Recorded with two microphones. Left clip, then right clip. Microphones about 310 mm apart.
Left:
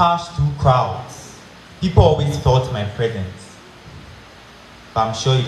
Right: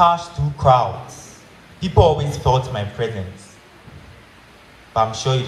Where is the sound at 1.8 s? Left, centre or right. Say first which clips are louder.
Even; right.